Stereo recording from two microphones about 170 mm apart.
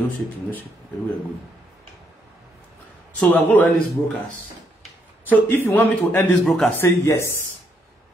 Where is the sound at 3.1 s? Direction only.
10° left (ahead or behind).